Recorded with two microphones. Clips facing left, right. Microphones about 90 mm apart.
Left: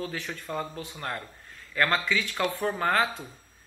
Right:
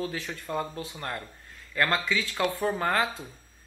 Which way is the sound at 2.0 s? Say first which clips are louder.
Even; 25° right (ahead or behind).